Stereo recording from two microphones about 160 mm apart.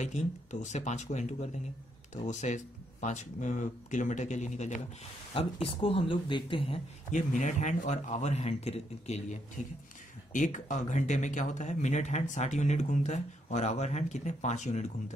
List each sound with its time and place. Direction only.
0.0 s speech: 45° left (ahead or behind)
5.3 s speech: 35° left (ahead or behind)
7.1 s speech: 50° left (ahead or behind)